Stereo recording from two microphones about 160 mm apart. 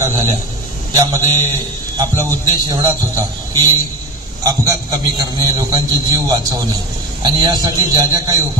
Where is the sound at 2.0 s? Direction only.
25° right (ahead or behind).